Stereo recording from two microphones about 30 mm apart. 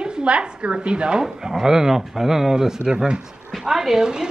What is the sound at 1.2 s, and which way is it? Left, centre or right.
A woman's voice, centre.